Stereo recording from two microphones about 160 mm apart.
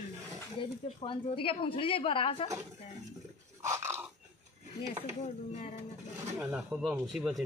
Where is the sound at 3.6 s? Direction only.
20° right (ahead or behind).